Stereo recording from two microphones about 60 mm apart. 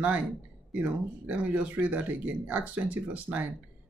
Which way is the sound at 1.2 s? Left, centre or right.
Right.